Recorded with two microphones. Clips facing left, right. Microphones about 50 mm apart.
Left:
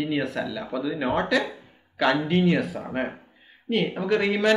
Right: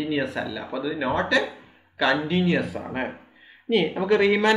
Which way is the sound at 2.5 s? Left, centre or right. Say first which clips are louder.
Even; centre.